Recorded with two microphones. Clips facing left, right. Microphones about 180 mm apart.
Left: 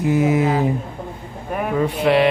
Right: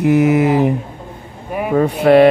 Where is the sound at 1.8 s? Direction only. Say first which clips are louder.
Right 7 dB; 45° right (ahead or behind).